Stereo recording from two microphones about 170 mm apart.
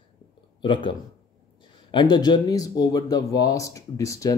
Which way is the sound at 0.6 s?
30° left (ahead or behind).